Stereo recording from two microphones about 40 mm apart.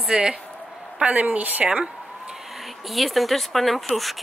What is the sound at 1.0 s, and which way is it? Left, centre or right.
Speech, right.